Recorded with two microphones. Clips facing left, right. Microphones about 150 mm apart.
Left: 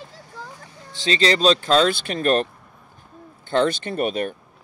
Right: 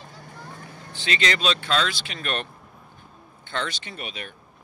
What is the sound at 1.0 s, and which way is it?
Speech, 35° left (ahead or behind).